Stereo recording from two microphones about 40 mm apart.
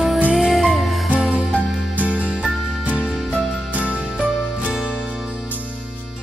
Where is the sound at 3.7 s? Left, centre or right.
Right.